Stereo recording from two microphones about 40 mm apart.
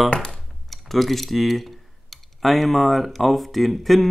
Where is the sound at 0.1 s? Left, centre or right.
Left.